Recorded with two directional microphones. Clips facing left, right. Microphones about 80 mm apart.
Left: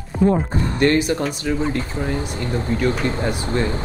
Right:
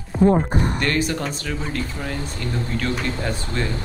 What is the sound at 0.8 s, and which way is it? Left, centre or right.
Speech, left.